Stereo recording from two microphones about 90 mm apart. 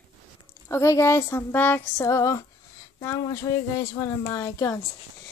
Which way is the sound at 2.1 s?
35° left (ahead or behind).